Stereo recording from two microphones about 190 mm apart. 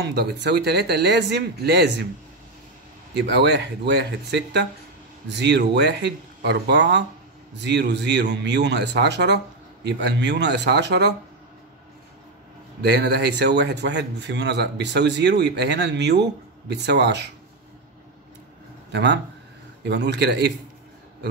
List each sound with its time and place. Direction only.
0.0 s a man's voice: 60° right (ahead or behind)
3.2 s a man's voice: 60° right (ahead or behind)
12.8 s a man's voice: 60° right (ahead or behind)
18.9 s a man's voice: 65° right (ahead or behind)